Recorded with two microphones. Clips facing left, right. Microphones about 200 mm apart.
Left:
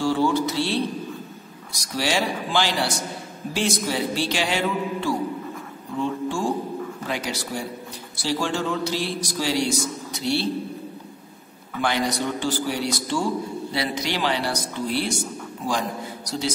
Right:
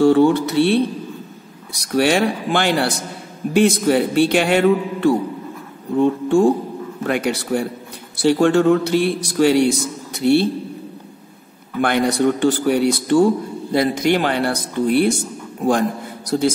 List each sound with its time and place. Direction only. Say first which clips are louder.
0.0 s a man's voice: right 8 dB; 60° right (ahead or behind)
11.8 s a man's voice: right 8 dB; 60° right (ahead or behind)